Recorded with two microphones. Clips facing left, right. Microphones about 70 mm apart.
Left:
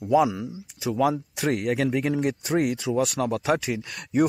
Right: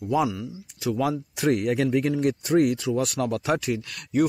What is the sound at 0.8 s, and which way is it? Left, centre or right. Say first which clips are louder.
Speech: left 2 dB; centre.